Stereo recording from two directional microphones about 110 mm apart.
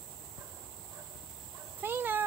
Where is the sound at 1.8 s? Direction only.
20° right (ahead or behind).